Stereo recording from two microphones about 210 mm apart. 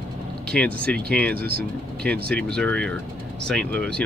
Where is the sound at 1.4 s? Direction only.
45° right (ahead or behind).